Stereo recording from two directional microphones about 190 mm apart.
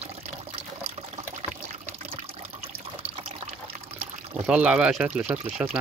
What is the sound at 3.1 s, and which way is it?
Water, 30° right (ahead or behind).